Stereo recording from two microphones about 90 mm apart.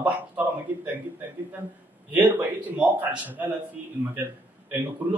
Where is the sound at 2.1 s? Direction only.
20° right (ahead or behind).